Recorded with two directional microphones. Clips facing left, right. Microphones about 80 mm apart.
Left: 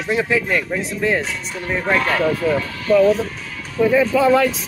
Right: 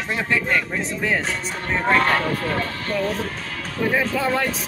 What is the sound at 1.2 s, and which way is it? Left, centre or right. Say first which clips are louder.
Speech: even; right.